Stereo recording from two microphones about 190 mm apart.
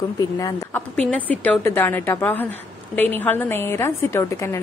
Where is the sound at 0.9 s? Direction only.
5° left (ahead or behind).